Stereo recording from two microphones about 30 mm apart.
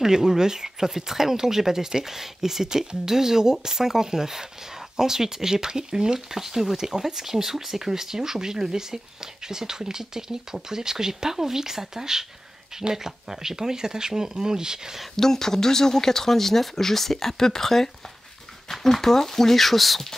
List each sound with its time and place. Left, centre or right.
0.0 s speech: centre
6.1 s speech: centre
15.1 s speech: centre